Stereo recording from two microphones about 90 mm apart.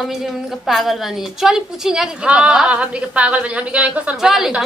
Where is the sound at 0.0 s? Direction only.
Centre (ahead or behind).